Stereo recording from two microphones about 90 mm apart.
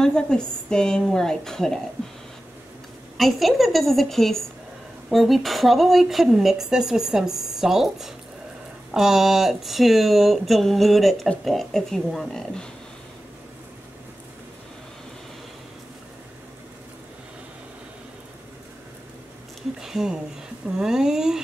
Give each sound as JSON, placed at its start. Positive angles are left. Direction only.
{"t": 0.0, "sound": "a woman's voice", "side_deg": 10}
{"t": 3.2, "sound": "speech", "side_deg": 0}
{"t": 19.8, "sound": "a sound", "side_deg": -5}
{"t": 20.6, "sound": "speech", "side_deg": -5}